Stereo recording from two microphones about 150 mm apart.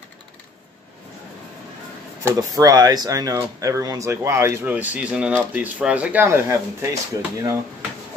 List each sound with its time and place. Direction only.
2.2 s speech: 25° right (ahead or behind)